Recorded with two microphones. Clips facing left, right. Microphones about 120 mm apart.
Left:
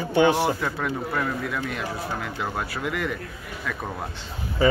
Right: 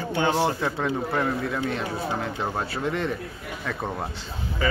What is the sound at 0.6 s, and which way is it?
Speech, 20° right (ahead or behind).